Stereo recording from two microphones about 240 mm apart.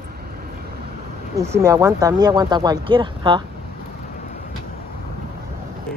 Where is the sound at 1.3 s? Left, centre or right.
Centre.